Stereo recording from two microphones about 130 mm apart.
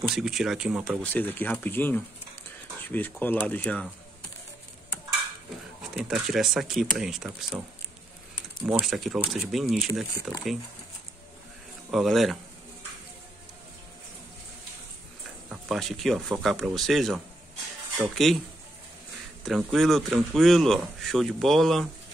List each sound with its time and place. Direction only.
0.1 s speech: 5° right (ahead or behind)
1.0 s speech: 15° left (ahead or behind)
5.9 s speech: centre (ahead or behind)
8.6 s speech: 5° right (ahead or behind)
11.9 s speech: centre (ahead or behind)
15.5 s speech: centre (ahead or behind)
19.4 s speech: centre (ahead or behind)